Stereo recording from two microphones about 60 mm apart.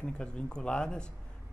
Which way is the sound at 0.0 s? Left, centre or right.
Centre.